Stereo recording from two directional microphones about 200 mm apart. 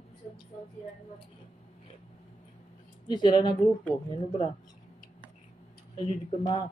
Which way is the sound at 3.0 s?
25° left (ahead or behind).